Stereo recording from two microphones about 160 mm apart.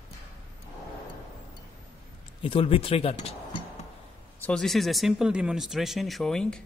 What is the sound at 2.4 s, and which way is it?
Speech, 35° left (ahead or behind).